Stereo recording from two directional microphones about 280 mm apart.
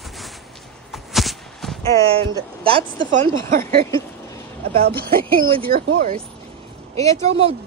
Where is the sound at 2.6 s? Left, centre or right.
Centre.